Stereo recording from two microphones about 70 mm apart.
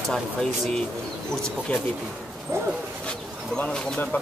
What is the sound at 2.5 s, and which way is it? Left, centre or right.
Speech, right.